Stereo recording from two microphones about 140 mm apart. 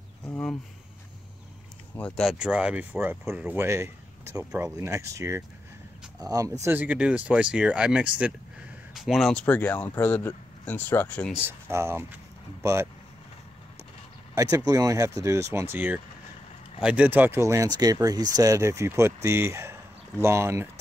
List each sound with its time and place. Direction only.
0.3 s a sound: 5° left (ahead or behind)
2.0 s speech: 5° left (ahead or behind)
2.3 s speech: 5° right (ahead or behind); by 6.5 s 25° right (ahead or behind)
6.6 s speech: 15° right (ahead or behind); by 11.3 s 10° left (ahead or behind)
11.3 s speech: 15° right (ahead or behind)
14.3 s speech: 25° right (ahead or behind)